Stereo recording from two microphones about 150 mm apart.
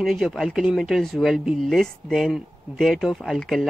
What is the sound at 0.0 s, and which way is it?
Speech, centre (ahead or behind).